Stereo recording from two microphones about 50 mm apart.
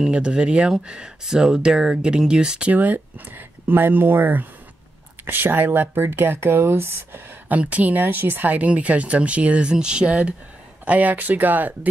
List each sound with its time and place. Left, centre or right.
0.1 s speech: centre
2.7 s speech: right
7.4 s speech: right
10.9 s speech: right